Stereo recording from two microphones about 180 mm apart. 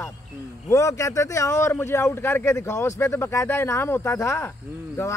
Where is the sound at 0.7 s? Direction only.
15° left (ahead or behind).